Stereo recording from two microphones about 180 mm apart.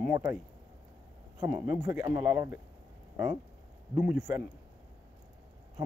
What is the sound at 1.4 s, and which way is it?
Speech, 10° right (ahead or behind).